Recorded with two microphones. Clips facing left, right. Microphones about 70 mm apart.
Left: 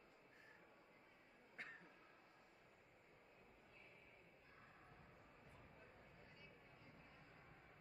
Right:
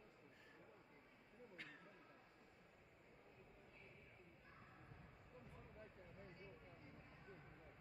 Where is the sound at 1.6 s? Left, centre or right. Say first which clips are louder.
Left 4 dB; left.